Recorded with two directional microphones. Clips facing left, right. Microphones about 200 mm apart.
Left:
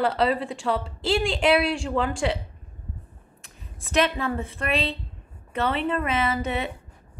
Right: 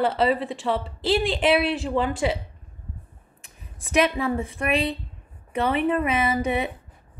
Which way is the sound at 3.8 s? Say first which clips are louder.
Right 2 dB; 15° right (ahead or behind).